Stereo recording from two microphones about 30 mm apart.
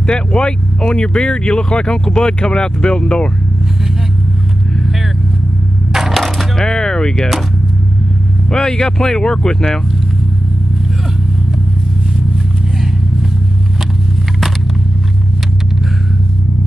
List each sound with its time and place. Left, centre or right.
0.0 s speech: left
6.1 s coin: centre
6.5 s speech: left
8.5 s speech: left